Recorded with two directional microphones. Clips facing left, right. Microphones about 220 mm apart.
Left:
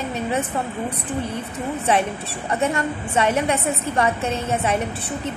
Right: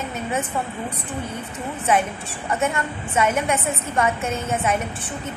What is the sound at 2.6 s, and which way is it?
A woman's voice, 35° left (ahead or behind).